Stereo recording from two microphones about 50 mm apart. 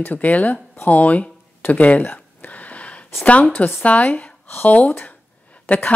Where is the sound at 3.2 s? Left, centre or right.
Left.